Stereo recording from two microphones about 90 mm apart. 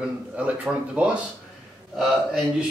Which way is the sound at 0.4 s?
15° right (ahead or behind).